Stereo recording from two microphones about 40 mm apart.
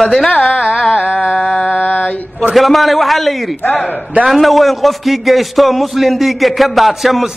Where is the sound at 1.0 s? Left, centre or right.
Left.